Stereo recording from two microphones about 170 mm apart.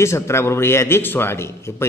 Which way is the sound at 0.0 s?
15° left (ahead or behind).